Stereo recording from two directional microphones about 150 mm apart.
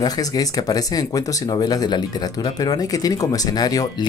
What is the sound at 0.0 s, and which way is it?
Speech, 25° left (ahead or behind).